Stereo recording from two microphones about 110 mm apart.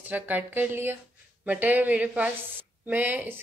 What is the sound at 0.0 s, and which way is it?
Speech, 15° right (ahead or behind).